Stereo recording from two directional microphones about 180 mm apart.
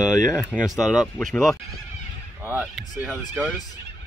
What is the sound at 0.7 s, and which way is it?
Speech, centre (ahead or behind).